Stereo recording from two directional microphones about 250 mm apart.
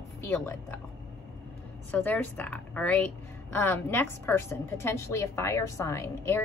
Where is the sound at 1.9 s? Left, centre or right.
Centre.